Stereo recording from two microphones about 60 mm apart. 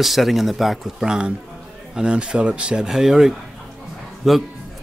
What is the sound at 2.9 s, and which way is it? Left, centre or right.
A man's voice, centre.